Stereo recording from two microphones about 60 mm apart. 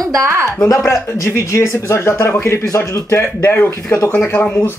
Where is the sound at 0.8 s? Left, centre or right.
Left.